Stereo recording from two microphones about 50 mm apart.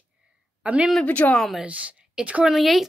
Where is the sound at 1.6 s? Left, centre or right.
Right.